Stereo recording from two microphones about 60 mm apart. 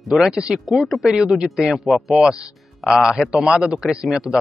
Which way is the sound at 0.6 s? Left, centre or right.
Centre.